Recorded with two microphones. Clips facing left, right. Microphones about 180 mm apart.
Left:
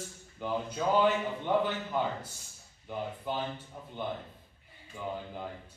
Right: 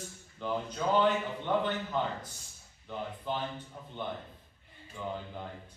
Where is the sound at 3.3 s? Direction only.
10° left (ahead or behind).